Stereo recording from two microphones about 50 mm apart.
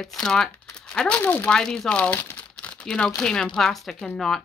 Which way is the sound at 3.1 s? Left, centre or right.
Centre.